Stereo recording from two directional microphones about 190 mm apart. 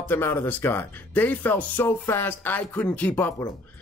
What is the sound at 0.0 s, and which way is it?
A man's voice, 10° left (ahead or behind).